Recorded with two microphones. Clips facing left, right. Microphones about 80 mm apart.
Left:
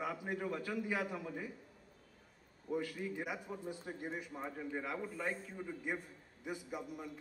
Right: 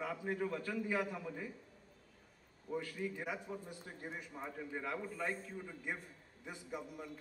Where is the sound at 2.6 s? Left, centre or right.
Centre.